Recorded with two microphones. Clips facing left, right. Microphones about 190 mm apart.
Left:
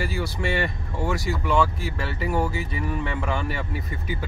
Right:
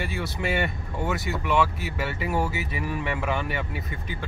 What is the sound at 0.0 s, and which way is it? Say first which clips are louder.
Speech: left 2 dB; centre (ahead or behind).